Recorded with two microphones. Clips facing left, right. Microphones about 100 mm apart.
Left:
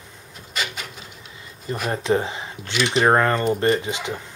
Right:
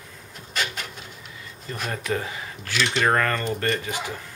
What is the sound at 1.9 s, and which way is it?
Speech, 25° left (ahead or behind).